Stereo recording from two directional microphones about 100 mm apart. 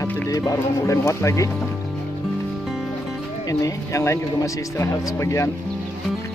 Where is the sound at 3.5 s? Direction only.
35° left (ahead or behind).